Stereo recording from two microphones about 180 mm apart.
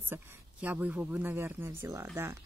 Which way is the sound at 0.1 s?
10° right (ahead or behind).